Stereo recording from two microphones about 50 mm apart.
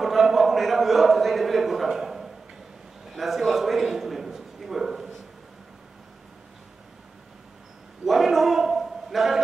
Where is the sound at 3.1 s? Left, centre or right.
Centre.